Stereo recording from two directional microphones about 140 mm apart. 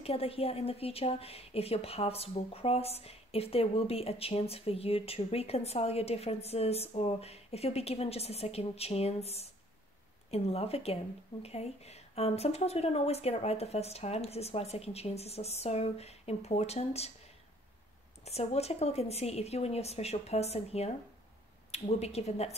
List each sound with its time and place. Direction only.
0.0 s a woman's voice: 45° left (ahead or behind)
18.2 s a woman's voice: 50° left (ahead or behind)